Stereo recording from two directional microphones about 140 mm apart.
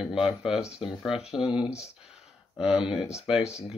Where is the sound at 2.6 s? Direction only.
5° right (ahead or behind).